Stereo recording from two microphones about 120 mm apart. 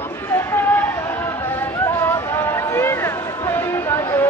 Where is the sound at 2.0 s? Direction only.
20° left (ahead or behind).